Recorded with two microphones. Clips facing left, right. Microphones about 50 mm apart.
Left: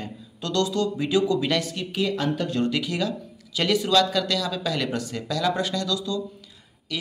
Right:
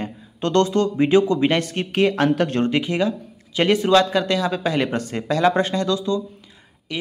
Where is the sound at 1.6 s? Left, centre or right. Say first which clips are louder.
Right 7 dB; right.